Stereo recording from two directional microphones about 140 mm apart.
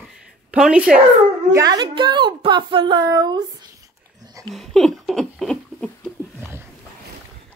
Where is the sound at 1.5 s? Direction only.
30° right (ahead or behind).